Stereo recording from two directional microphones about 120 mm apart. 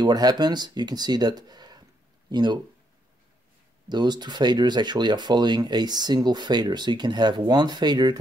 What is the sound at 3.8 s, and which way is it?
Speech, 35° right (ahead or behind).